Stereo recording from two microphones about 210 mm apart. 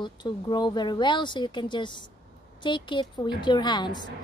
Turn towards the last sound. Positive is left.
turn(degrees=20)  # may be behind; listen again after turning